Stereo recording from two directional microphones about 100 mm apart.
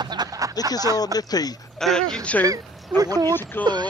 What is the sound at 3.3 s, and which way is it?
Speech, 20° left (ahead or behind).